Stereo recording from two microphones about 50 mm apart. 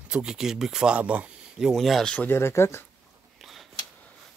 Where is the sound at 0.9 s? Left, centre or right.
Right.